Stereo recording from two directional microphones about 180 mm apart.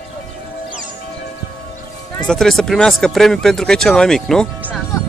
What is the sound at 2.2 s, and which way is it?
Speech, 5° left (ahead or behind).